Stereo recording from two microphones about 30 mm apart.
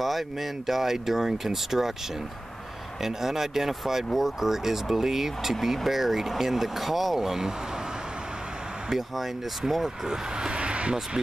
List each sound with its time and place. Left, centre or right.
0.0 s speech: centre
3.0 s speech: centre
8.9 s speech: centre
10.5 s a sound: right